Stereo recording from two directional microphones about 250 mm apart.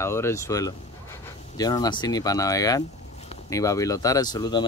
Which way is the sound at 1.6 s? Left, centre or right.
Centre.